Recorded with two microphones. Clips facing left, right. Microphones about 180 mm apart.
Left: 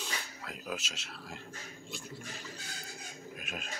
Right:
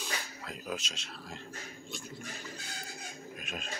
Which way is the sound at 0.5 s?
5° left (ahead or behind).